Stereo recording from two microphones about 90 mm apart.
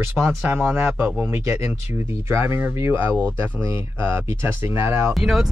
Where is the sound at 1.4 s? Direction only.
30° right (ahead or behind).